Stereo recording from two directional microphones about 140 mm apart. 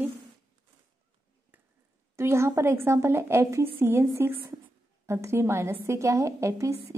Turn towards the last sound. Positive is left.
turn(degrees=-20)  # may be behind; listen again after turning